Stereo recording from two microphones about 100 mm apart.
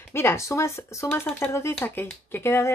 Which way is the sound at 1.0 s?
15° left (ahead or behind).